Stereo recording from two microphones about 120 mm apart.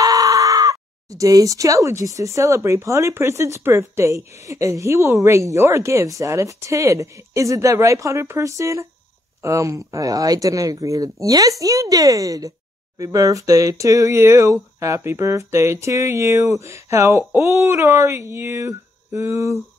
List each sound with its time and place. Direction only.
0.0 s speech: 30° right (ahead or behind)